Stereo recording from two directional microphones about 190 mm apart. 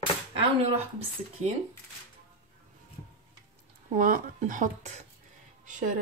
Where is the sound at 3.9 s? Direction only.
45° right (ahead or behind).